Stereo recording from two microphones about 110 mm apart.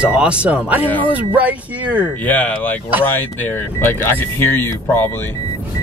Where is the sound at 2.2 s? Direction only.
15° left (ahead or behind).